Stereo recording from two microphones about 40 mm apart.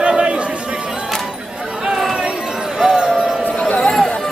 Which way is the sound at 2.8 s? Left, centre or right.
Centre.